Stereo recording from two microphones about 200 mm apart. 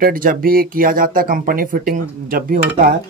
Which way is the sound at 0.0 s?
45° right (ahead or behind).